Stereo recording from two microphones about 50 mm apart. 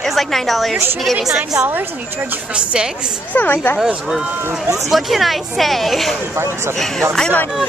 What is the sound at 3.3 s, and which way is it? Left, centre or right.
Speech, left.